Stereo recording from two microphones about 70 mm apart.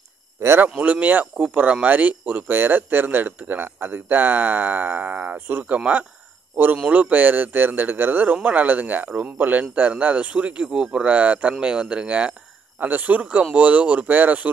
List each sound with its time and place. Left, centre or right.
0.4 s speech: right
0.7 s a man's voice: right